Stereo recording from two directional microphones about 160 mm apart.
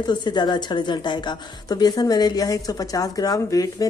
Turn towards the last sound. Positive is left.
turn(degrees=20)  # may be behind; listen again after turning